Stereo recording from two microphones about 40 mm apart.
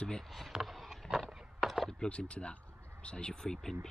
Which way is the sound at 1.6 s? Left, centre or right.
Centre.